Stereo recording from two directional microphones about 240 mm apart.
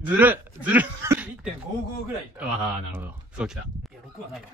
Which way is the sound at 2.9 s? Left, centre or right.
Centre.